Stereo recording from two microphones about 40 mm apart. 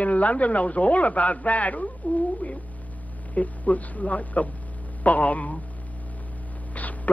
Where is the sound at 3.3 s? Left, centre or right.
Left.